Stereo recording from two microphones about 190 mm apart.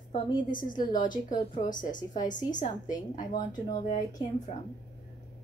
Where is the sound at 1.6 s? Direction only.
45° left (ahead or behind).